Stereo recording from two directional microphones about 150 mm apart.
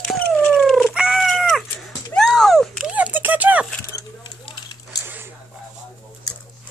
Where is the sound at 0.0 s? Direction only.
Centre (ahead or behind).